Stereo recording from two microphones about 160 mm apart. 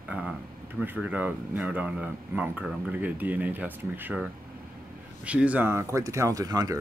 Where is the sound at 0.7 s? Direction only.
10° right (ahead or behind).